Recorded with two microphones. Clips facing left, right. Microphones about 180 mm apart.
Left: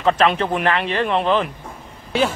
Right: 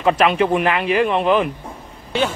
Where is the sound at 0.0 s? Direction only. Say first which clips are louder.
Right 2 dB; 10° right (ahead or behind).